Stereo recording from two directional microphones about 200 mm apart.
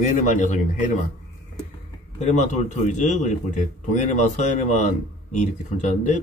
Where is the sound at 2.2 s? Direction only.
35° left (ahead or behind).